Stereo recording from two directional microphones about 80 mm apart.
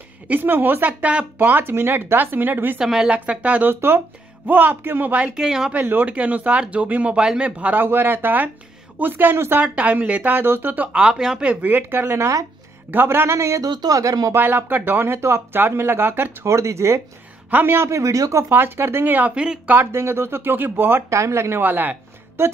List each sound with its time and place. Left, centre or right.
0.3 s speech: right
2.8 s speech: centre
5.7 s a woman's voice: right
13.7 s speech: right
14.3 s speech: right
17.5 s speech: right
17.8 s a woman's voice: right
18.5 s speech: right; by 19.7 s centre
19.7 s speech: right
21.1 s a woman's voice: right